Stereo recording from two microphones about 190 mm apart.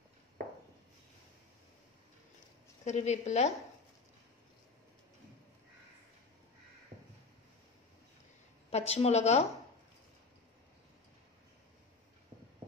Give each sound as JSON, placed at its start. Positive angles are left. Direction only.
{"t": 2.8, "sound": "speech", "side_deg": 35}
{"t": 8.6, "sound": "speech", "side_deg": 35}